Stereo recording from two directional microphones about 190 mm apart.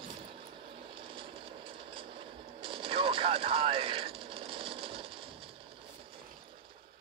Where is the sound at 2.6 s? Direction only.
30° right (ahead or behind).